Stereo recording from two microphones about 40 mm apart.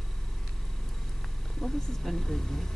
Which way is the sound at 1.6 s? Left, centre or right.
Centre.